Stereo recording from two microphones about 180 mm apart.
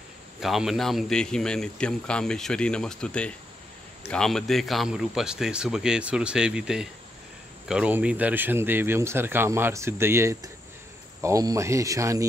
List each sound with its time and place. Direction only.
0.4 s speech: centre (ahead or behind); by 12.3 s 15° right (ahead or behind)